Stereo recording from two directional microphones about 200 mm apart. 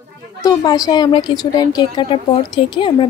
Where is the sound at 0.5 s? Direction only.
20° left (ahead or behind).